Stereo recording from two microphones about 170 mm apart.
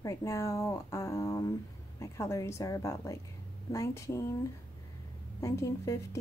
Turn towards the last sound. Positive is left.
turn(degrees=20)  # may be behind; listen again after turning